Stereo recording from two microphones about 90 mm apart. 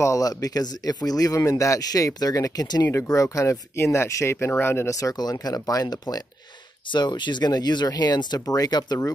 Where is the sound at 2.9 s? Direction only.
35° left (ahead or behind).